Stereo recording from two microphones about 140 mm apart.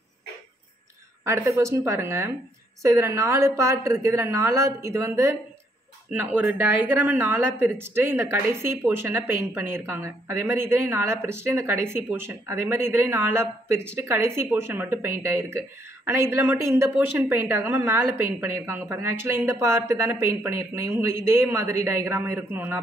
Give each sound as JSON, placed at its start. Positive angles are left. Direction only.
{"t": 1.2, "sound": "a woman's voice", "side_deg": -15}